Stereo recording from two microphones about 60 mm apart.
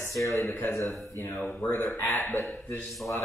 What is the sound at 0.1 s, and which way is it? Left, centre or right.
Speech, left.